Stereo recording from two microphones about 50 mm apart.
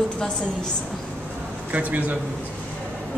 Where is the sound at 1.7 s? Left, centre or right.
Right.